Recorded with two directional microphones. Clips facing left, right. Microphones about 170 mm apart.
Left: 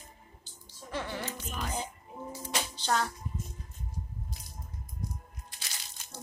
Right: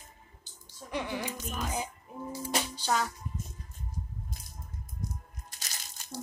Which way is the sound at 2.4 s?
10° right (ahead or behind).